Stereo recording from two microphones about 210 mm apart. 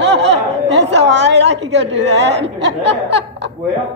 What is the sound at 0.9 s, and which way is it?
A woman's voice, 55° right (ahead or behind).